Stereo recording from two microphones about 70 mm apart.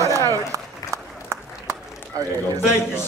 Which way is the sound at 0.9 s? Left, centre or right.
Right.